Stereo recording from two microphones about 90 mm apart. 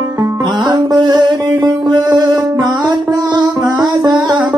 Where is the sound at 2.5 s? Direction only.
40° right (ahead or behind).